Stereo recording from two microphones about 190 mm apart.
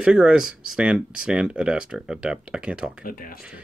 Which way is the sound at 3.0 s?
50° left (ahead or behind).